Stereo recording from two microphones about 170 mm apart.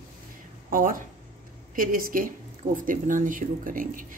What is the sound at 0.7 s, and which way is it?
Speech, 55° right (ahead or behind).